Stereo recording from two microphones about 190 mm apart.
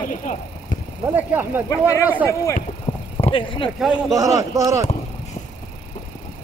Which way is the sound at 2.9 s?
40° left (ahead or behind).